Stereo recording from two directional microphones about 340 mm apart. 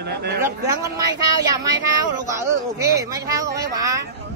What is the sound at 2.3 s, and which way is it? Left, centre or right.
Speech, centre.